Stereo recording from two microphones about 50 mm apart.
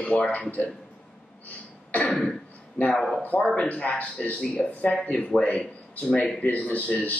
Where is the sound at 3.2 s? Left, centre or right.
Left.